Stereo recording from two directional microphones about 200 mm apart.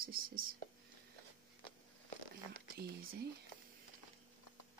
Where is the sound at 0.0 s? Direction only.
45° right (ahead or behind).